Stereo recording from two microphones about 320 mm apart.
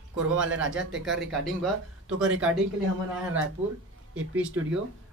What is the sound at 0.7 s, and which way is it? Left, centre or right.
Speech, centre.